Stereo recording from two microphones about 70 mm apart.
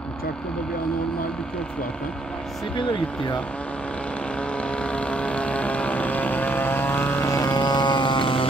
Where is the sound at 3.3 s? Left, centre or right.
Centre.